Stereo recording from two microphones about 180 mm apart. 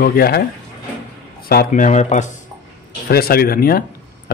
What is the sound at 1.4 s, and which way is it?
Speech, 55° left (ahead or behind).